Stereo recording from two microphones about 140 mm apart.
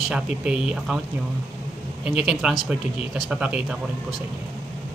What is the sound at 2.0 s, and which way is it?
A man's voice, 5° right (ahead or behind).